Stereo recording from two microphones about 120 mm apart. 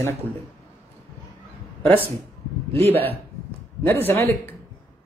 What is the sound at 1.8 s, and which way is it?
Speech, 15° left (ahead or behind).